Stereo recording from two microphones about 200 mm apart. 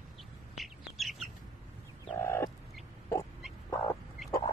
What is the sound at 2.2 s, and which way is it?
Fowl, 10° left (ahead or behind).